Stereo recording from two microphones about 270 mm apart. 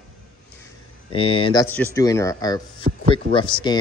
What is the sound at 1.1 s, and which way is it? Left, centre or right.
Speech, centre.